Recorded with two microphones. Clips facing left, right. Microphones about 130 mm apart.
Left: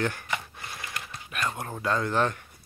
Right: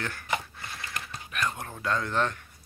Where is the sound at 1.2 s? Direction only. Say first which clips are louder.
Even; 10° left (ahead or behind).